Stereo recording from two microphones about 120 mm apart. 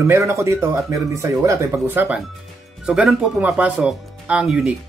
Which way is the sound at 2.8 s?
5° right (ahead or behind).